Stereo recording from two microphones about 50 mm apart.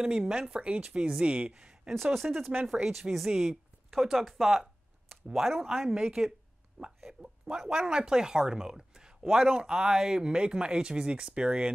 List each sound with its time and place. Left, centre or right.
0.0 s speech: centre
1.5 s a sound: centre
2.2 s speech: centre
2.7 s speech: centre